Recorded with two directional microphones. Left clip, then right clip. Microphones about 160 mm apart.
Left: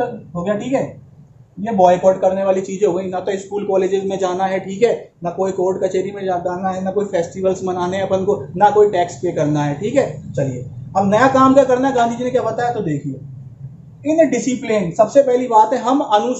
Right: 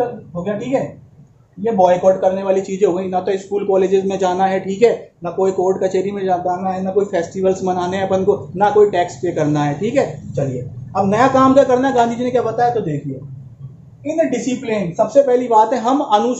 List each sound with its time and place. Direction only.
0.4 s a man's voice: 15° right (ahead or behind)
14.4 s speech: 10° right (ahead or behind)
15.3 s a man's voice: 25° right (ahead or behind)